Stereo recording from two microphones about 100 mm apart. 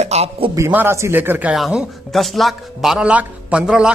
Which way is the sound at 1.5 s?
5° right (ahead or behind).